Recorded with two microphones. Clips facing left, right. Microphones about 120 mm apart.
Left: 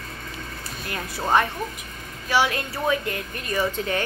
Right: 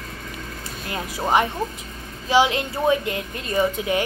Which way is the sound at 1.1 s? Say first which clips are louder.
Right 1 dB; 15° right (ahead or behind).